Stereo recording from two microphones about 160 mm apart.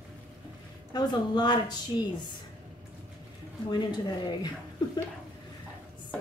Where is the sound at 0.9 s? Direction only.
25° left (ahead or behind).